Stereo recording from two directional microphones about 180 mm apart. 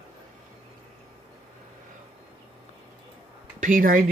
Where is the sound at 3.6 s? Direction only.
50° right (ahead or behind).